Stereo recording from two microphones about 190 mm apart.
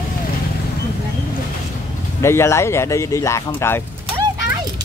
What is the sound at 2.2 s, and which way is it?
Speech, 15° left (ahead or behind).